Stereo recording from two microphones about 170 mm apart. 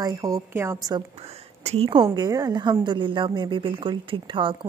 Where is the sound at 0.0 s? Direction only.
20° right (ahead or behind).